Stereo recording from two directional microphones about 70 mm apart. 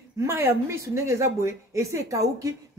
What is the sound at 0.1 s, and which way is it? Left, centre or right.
A woman's voice, right.